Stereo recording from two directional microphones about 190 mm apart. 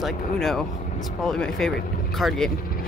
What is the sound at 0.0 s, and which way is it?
Speech, centre (ahead or behind).